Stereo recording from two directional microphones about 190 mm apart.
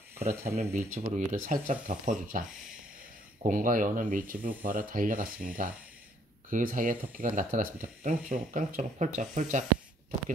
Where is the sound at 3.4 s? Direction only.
45° right (ahead or behind).